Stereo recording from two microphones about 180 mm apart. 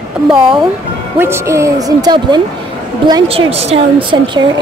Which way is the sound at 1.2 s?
15° right (ahead or behind).